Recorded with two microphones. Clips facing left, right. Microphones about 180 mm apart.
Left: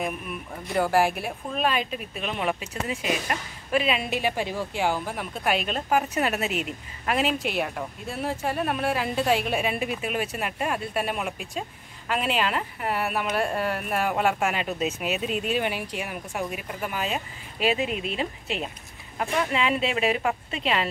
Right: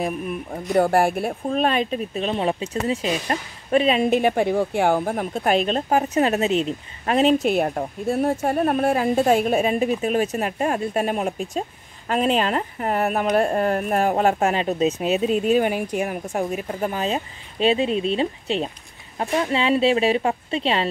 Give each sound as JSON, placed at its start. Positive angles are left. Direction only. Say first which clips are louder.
{"t": 0.0, "sound": "speech", "louder": "right 5 dB", "side_deg": -40}
{"t": 1.5, "sound": "a woman's voice", "louder": "right 5 dB", "side_deg": -35}
{"t": 4.1, "sound": "a woman's voice", "louder": "right 8 dB", "side_deg": -55}